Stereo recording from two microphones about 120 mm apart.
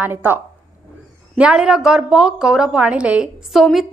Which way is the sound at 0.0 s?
15° right (ahead or behind).